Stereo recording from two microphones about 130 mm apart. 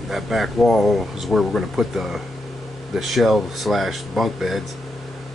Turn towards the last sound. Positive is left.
turn(degrees=0)  # may be behind; listen again after turning